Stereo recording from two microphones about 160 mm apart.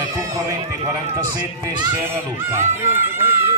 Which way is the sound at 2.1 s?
15° right (ahead or behind).